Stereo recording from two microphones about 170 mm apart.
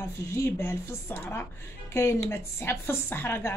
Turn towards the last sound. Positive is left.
turn(degrees=15)  # may be behind; listen again after turning